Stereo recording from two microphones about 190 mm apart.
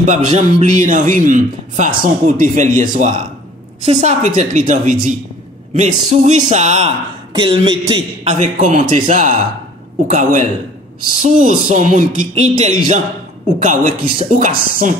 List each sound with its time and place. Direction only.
0.0 s speech: 40° right (ahead or behind)